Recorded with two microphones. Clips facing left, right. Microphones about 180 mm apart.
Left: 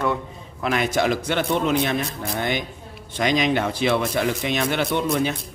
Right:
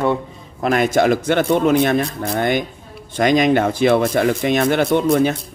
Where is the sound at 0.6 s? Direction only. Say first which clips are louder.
Right 6 dB; 45° right (ahead or behind).